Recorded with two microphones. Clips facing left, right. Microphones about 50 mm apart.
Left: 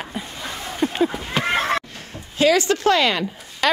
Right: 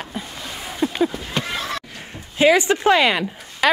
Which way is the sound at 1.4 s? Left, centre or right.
Left.